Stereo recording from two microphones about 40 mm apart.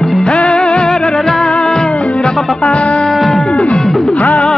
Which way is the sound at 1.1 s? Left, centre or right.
Centre.